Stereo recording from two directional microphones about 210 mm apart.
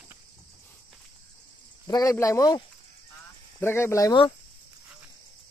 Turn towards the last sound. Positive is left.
turn(degrees=20)  # may be behind; listen again after turning